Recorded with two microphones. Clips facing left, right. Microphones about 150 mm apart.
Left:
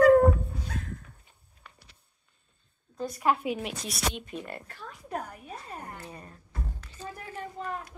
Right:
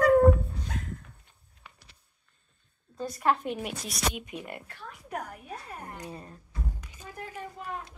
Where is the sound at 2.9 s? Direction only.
5° left (ahead or behind).